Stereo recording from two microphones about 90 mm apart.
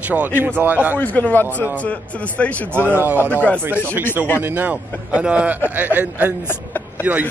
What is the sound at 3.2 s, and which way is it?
Speech, 20° left (ahead or behind).